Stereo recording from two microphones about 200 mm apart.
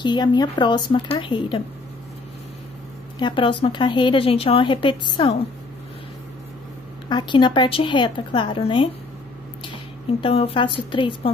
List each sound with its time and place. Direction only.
0.0 s speech: 20° left (ahead or behind)
3.2 s speech: 25° left (ahead or behind)
7.1 s speech: 20° left (ahead or behind)
10.2 s speech: 30° left (ahead or behind)